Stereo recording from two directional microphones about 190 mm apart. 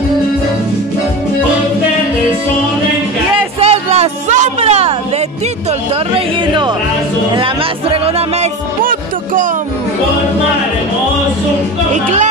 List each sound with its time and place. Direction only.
3.5 s a sound: 35° right (ahead or behind)
7.3 s music: 30° right (ahead or behind)
8.8 s music: 45° right (ahead or behind)
11.9 s music: 40° right (ahead or behind)